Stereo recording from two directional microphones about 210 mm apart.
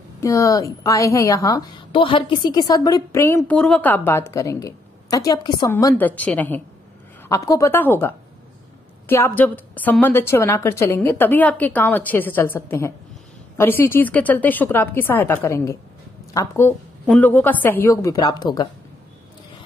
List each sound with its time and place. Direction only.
0.2 s a woman's voice: 15° left (ahead or behind)